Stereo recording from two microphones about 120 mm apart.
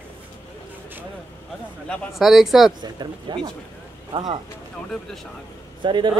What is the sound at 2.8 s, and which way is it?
Speech, 35° right (ahead or behind).